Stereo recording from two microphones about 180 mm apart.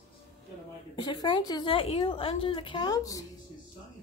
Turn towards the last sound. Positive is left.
turn(degrees=20)  # may be behind; listen again after turning